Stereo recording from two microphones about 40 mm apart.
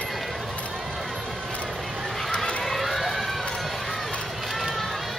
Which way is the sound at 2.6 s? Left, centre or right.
Centre.